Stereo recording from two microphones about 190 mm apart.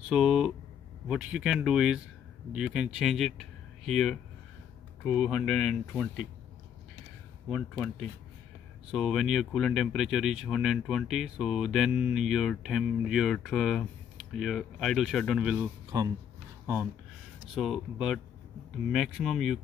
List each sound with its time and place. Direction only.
0.1 s speech: 5° right (ahead or behind)
8.9 s speech: centre (ahead or behind)
15.9 s speech: 20° right (ahead or behind); by 19.6 s centre (ahead or behind)